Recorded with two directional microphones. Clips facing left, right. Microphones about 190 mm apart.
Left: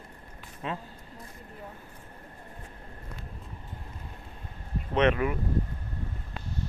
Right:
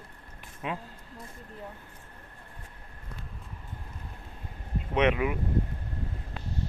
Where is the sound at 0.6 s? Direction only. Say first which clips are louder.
Even; 10° right (ahead or behind).